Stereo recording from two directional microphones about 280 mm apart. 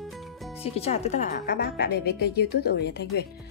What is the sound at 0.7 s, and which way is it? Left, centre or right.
A woman's voice, left.